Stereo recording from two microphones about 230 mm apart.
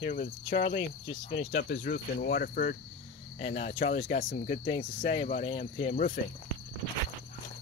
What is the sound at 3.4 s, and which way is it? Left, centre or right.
Cricket, left.